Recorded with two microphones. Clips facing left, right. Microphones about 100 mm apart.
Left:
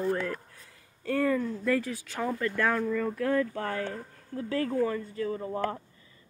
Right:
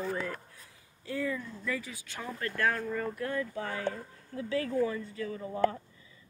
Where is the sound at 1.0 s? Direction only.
50° left (ahead or behind); by 1.9 s 70° left (ahead or behind).